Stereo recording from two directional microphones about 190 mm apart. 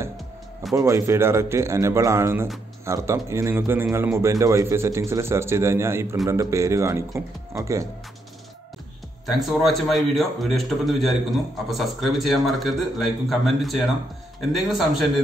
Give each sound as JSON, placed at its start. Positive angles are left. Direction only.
{"t": 0.7, "sound": "a man's voice", "side_deg": -15}
{"t": 9.2, "sound": "speech", "side_deg": 0}